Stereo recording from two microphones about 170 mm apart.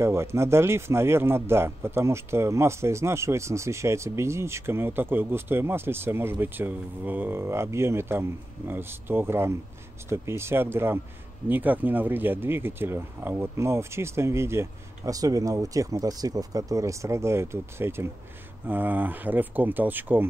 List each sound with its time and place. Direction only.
0.0 s speech: 15° right (ahead or behind)